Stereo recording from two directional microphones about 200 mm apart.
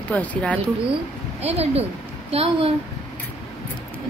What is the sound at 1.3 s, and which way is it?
A child's voice, 30° right (ahead or behind).